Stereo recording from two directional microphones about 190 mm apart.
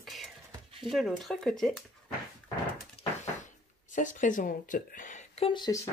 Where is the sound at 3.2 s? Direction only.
40° left (ahead or behind); by 5.9 s 20° left (ahead or behind).